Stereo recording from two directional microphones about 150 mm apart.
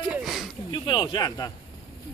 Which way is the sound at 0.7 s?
35° left (ahead or behind).